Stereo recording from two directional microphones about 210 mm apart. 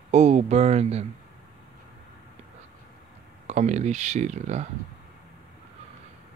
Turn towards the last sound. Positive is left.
turn(degrees=-35)  # may be behind; listen again after turning